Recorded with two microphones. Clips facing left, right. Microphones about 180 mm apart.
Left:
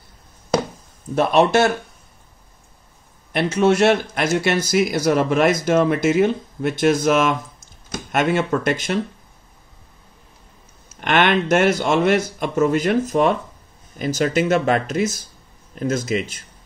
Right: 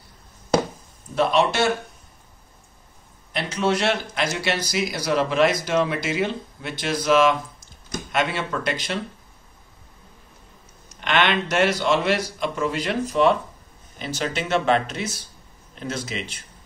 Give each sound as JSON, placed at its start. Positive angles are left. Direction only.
{"t": 1.1, "sound": "speech", "side_deg": 45}
{"t": 3.3, "sound": "speech", "side_deg": 50}
{"t": 11.0, "sound": "speech", "side_deg": 50}